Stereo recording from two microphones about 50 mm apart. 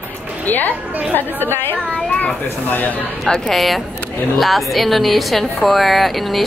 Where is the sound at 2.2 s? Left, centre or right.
Left.